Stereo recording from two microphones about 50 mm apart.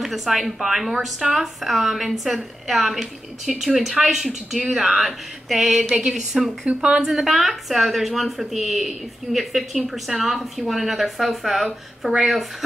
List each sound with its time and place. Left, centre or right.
0.0 s speech: centre
6.8 s speech: centre
7.1 s speech: centre